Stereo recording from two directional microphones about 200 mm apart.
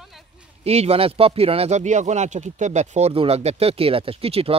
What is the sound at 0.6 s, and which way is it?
Speech, 30° right (ahead or behind).